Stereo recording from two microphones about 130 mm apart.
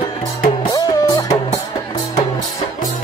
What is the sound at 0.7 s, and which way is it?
Music, 30° left (ahead or behind).